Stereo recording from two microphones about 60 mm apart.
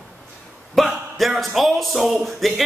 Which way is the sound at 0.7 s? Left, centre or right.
Centre.